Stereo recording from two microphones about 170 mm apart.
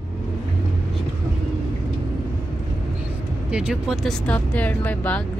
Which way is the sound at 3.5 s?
5° right (ahead or behind).